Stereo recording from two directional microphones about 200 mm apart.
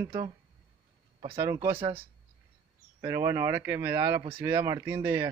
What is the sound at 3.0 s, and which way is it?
Speech, 15° right (ahead or behind).